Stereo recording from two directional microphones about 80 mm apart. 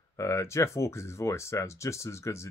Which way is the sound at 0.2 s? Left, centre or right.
Left.